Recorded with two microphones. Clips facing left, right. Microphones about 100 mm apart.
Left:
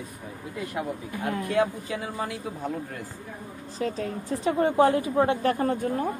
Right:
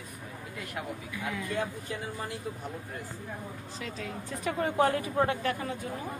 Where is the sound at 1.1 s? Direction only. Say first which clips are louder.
Left 6 dB; 55° left (ahead or behind).